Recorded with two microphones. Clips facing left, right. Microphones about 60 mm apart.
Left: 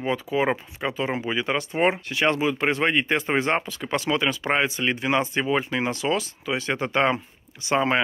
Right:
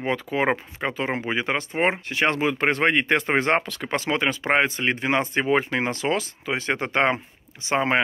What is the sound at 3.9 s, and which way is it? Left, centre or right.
Speech, right.